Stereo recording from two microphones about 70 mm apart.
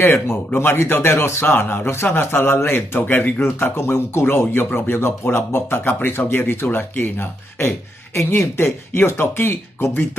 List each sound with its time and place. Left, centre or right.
0.0 s speech: left